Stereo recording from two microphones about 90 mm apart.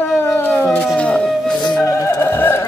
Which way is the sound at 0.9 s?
10° left (ahead or behind).